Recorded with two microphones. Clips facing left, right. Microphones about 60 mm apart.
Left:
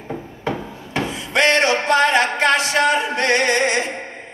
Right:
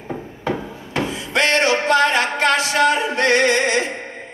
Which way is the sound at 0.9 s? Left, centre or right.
Left.